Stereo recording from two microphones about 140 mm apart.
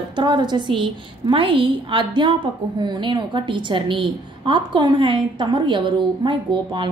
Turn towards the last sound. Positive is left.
turn(degrees=-35)  # may be behind; listen again after turning